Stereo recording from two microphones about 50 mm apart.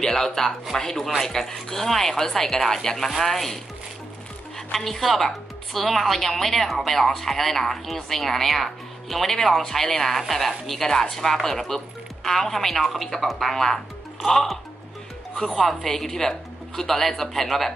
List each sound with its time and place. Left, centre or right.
0.0 s a woman's voice: centre
4.7 s a woman's voice: centre
15.7 s speech: centre